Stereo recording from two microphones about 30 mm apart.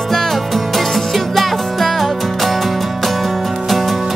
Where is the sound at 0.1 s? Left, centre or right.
Centre.